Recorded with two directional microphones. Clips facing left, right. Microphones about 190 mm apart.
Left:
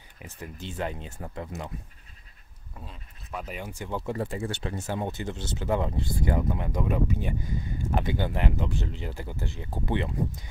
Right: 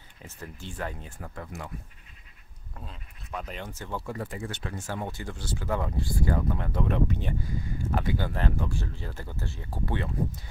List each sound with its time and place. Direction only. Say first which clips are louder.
0.2 s speech: left 2 dB; 15° left (ahead or behind)
2.7 s speech: even; centre (ahead or behind)
7.9 s speech: left 2 dB; 20° left (ahead or behind)